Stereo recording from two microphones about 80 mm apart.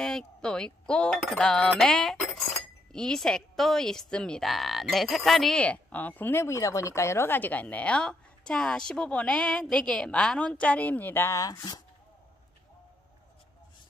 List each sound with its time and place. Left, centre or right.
0.0 s speech: centre
5.6 s a woman's voice: centre
11.3 s speech: left